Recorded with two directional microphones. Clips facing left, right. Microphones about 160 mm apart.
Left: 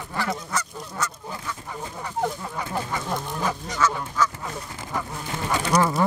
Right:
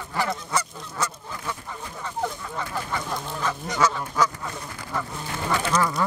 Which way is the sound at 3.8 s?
15° right (ahead or behind).